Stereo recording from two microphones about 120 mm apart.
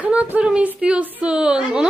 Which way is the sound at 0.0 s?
10° right (ahead or behind).